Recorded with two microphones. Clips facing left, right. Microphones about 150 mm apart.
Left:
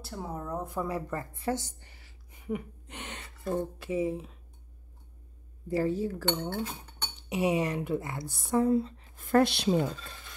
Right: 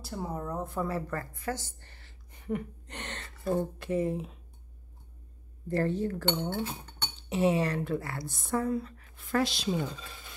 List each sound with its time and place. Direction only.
0.0 s a woman's voice: centre (ahead or behind)
1.3 s a woman's voice: 25° left (ahead or behind); by 4.4 s centre (ahead or behind)
5.7 s a woman's voice: 5° left (ahead or behind)
7.2 s speech: 15° left (ahead or behind)
8.5 s speech: 25° left (ahead or behind)
9.1 s a woman's voice: 50° left (ahead or behind)